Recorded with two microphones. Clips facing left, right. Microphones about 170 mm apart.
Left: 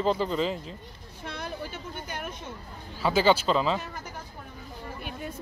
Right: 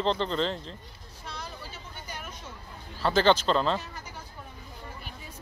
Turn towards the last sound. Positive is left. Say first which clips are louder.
# left 1 dB
turn(degrees=5)  # may be behind; listen again after turning